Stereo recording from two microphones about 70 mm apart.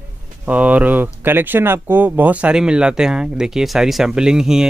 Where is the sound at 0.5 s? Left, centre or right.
Right.